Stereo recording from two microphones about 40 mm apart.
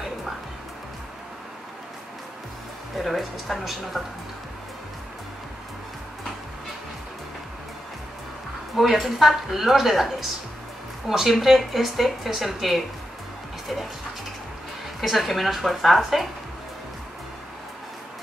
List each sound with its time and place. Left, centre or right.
3.0 s speech: centre
8.7 s speech: centre
11.1 s speech: centre
15.0 s speech: centre